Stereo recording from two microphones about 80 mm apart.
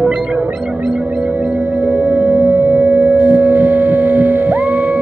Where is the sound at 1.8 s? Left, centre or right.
Right.